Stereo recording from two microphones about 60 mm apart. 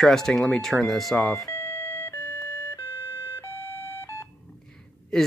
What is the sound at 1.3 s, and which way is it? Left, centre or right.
Doorbell, left.